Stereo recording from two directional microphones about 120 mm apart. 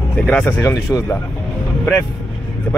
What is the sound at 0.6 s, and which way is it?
Speech, 25° left (ahead or behind).